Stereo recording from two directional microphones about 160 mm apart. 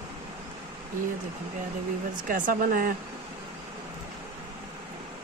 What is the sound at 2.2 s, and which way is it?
Speech, 55° right (ahead or behind).